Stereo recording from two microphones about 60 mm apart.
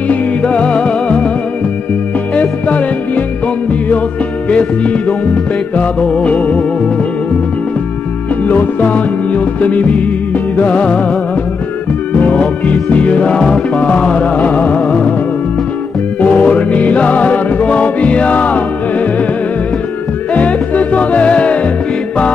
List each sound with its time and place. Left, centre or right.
0.1 s music: left
2.3 s music: left
4.5 s music: left
8.5 s music: left
12.1 s music: left
16.2 s music: left
20.3 s music: left